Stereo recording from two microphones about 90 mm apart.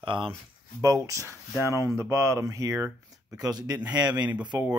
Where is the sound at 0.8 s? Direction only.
35° right (ahead or behind).